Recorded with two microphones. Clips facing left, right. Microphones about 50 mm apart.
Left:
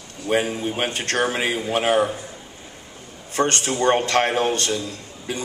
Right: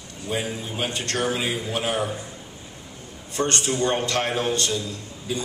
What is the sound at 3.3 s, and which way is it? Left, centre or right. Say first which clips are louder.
A man's voice: left 3 dB; left.